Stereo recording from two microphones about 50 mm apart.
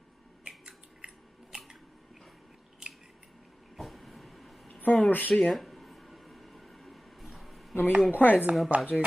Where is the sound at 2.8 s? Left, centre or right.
Centre.